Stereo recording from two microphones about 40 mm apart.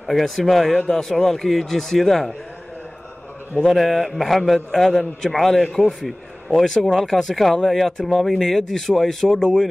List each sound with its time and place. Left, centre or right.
0.0 s a man's voice: centre
3.6 s a man's voice: centre
9.4 s speech: centre